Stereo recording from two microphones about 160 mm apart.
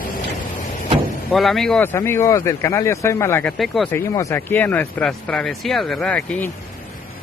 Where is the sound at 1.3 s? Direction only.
Centre (ahead or behind).